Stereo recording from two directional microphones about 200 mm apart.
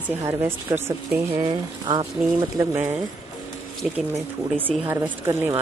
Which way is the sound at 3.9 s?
10° right (ahead or behind).